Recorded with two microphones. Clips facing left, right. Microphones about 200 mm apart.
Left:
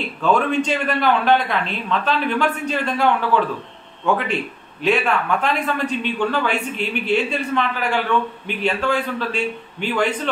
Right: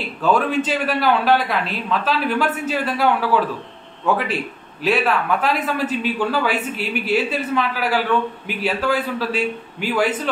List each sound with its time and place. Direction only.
0.2 s a man's voice: 5° right (ahead or behind)